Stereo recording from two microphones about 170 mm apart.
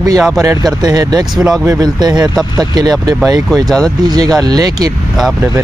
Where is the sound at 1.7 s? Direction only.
25° right (ahead or behind).